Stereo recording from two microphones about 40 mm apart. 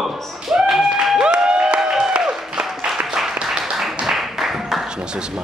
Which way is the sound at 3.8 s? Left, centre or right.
Centre.